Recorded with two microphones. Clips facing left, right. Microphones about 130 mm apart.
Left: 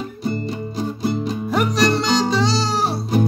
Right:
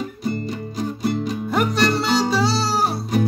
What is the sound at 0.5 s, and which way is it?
Music, 30° left (ahead or behind).